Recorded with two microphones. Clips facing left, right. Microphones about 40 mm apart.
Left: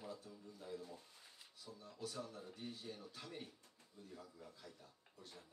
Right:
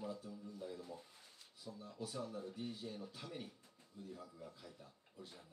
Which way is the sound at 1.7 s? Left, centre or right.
Centre.